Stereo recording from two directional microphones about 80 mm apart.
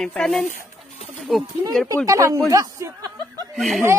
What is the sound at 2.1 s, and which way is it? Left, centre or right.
Speech, right.